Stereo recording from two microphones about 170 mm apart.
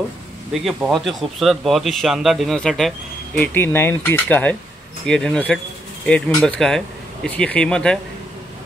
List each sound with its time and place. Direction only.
0.5 s a man's voice: 5° right (ahead or behind)
3.3 s a man's voice: 15° left (ahead or behind)